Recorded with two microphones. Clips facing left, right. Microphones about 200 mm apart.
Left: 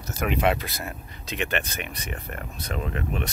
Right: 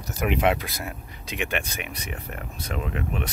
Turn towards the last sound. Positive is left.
turn(degrees=-10)  # may be behind; listen again after turning